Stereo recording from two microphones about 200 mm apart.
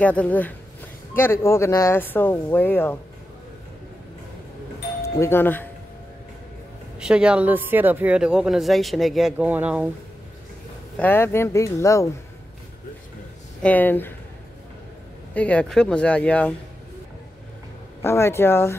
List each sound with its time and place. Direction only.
0.0 s speech: 5° left (ahead or behind)
5.2 s speech: 10° left (ahead or behind)
7.0 s speech: 5° right (ahead or behind)
11.0 s speech: 10° left (ahead or behind)
13.6 s speech: 10° left (ahead or behind)
15.3 s speech: 5° left (ahead or behind)
18.0 s speech: 10° left (ahead or behind)